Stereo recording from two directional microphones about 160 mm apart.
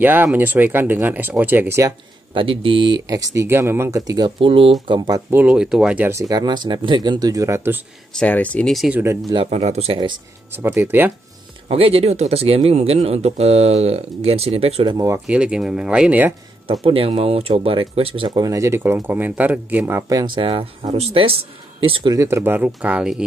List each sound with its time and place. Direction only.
0.0 s speech: 10° right (ahead or behind)
2.3 s speech: 35° right (ahead or behind)
4.4 s speech: 35° right (ahead or behind)
5.3 s speech: 10° right (ahead or behind)
8.2 s speech: 10° left (ahead or behind)
9.3 s speech: 35° right (ahead or behind)
10.5 s speech: 15° right (ahead or behind)
11.7 s speech: 40° right (ahead or behind)
15.2 s speech: 5° right (ahead or behind)
16.6 s speech: 35° right (ahead or behind); by 23.2 s 5° right (ahead or behind)